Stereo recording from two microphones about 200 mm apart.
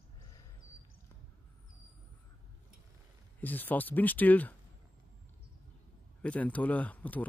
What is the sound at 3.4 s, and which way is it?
Speech, 10° left (ahead or behind).